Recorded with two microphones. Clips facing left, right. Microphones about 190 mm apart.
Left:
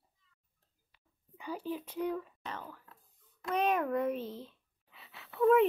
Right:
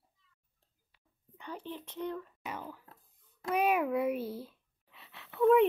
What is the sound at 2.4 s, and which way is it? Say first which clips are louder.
A child's voice: right 2 dB; 10° right (ahead or behind).